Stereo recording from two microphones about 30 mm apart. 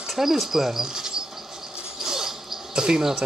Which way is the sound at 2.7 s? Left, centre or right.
Right.